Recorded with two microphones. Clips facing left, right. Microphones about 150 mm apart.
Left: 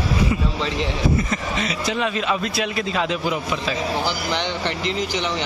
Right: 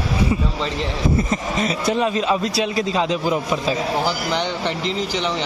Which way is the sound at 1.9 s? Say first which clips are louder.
Right 2 dB; 30° right (ahead or behind).